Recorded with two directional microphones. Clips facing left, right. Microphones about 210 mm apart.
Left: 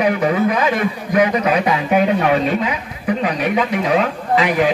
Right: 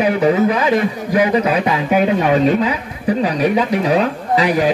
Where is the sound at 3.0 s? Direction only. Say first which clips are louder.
Right 3 dB; 35° right (ahead or behind).